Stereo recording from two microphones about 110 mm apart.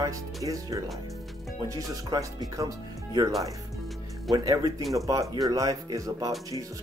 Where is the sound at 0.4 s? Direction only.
30° right (ahead or behind).